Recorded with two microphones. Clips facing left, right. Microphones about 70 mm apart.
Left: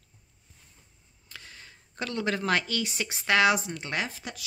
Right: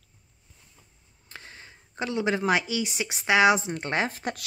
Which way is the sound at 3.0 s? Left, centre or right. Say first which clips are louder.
Right 3 dB; centre.